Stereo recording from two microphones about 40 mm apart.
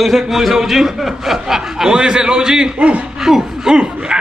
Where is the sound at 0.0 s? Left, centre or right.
Centre.